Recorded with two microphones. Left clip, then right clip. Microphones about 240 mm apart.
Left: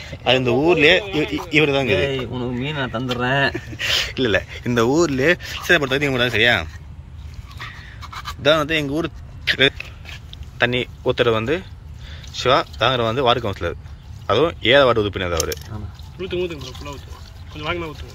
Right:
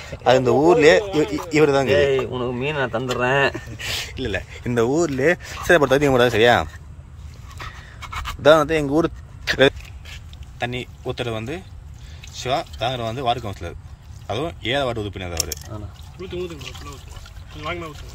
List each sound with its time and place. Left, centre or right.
0.2 s speech: right
7.5 s a sound: right
10.6 s speech: centre
16.2 s speech: centre
17.6 s speech: centre